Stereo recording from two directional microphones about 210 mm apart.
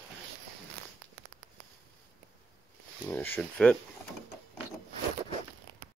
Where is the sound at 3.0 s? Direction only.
10° left (ahead or behind).